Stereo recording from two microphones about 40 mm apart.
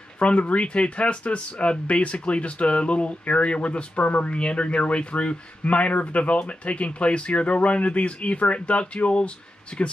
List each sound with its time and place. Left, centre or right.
0.2 s a man's voice: left